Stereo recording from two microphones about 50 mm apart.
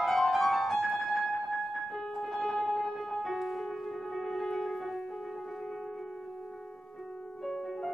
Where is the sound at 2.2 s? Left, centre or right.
Centre.